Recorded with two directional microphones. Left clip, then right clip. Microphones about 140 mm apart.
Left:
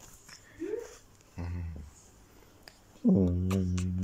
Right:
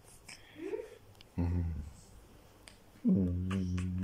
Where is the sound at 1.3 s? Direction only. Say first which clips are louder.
Right 6 dB; 20° right (ahead or behind).